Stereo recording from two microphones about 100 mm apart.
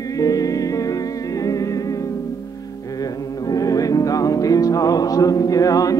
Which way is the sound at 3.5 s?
35° left (ahead or behind).